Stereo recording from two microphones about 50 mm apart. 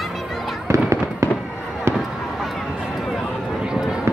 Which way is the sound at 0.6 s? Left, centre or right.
Right.